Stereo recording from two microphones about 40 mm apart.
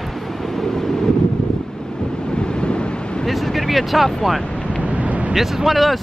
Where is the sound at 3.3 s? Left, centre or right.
Centre.